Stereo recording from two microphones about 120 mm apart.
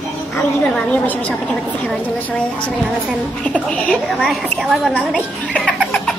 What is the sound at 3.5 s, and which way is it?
A woman's voice, 10° left (ahead or behind).